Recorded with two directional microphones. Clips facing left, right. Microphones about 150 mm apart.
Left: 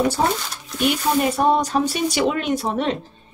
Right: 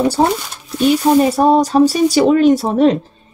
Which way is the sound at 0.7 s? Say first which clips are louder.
Right 8 dB; 35° right (ahead or behind).